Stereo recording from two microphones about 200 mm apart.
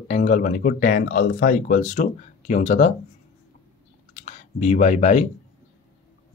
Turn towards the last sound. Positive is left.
turn(degrees=35)  # may be behind; listen again after turning